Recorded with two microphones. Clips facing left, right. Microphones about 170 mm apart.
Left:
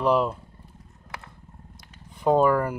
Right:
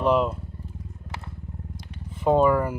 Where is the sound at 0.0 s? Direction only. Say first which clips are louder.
Right 1 dB; centre (ahead or behind).